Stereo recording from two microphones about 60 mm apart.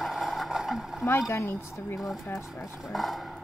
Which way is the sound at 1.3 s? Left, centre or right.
Left.